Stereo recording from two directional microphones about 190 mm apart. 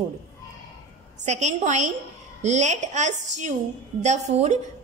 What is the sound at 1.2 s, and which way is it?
A woman's voice, 40° right (ahead or behind).